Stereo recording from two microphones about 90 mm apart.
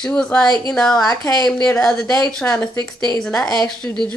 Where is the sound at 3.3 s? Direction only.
45° left (ahead or behind).